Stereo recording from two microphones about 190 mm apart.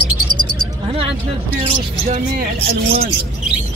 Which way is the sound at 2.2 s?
50° right (ahead or behind).